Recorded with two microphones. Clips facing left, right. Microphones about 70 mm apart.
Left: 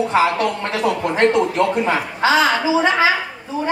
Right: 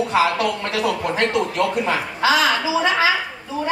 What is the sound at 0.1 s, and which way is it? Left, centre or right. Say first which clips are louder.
A woman's voice: even; left.